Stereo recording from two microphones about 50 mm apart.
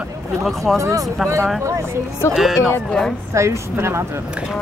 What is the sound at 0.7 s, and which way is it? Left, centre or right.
Speech, right.